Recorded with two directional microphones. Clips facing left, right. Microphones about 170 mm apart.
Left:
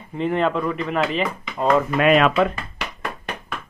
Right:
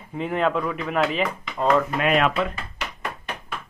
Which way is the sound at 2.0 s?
90° left.